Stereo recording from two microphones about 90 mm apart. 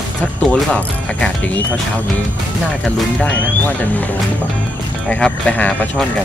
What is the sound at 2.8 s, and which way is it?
Speech, 15° left (ahead or behind).